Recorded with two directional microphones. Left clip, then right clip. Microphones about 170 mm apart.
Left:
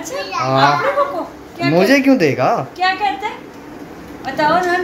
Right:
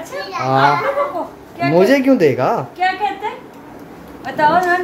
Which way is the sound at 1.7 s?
15° right (ahead or behind).